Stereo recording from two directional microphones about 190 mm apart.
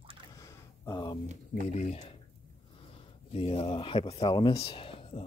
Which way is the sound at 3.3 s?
30° left (ahead or behind).